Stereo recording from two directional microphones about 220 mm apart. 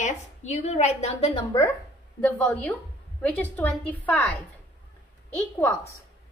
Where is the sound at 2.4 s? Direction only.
5° left (ahead or behind).